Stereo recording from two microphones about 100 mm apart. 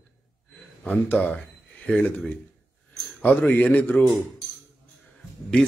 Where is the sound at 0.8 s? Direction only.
15° left (ahead or behind).